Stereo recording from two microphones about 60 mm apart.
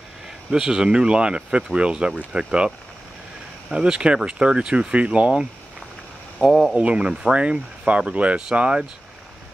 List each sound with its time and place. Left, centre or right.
0.5 s speech: centre
3.7 s speech: centre
6.4 s speech: centre
6.8 s speech: centre